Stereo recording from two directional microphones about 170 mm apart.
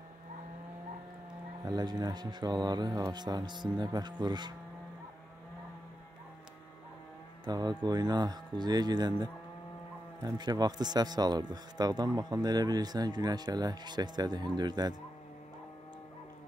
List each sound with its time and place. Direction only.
1.6 s speech: 25° right (ahead or behind)
7.4 s speech: 25° right (ahead or behind)